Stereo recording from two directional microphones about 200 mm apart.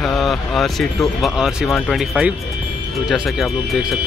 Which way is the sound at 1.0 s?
Centre (ahead or behind).